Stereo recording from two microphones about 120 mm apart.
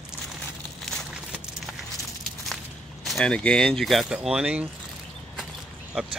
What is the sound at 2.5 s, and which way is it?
Speech, centre (ahead or behind).